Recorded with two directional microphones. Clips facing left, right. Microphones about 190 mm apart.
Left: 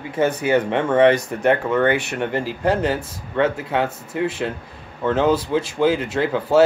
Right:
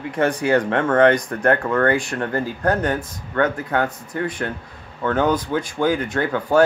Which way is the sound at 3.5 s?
5° left (ahead or behind).